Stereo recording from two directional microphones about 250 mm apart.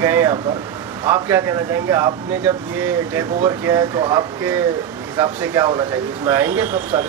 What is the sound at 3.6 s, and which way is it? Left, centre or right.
Speech, centre.